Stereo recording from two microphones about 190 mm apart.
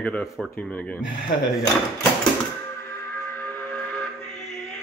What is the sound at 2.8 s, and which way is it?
Steam whistle, 10° left (ahead or behind).